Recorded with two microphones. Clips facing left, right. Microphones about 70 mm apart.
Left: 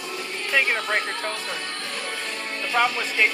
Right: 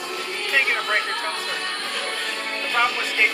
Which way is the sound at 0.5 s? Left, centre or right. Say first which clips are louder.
Right 1 dB; centre.